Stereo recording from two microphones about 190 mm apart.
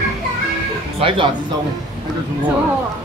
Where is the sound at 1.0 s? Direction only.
25° right (ahead or behind).